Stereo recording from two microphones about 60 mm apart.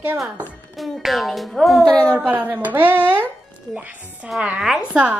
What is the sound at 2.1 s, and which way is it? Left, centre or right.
Speech, right.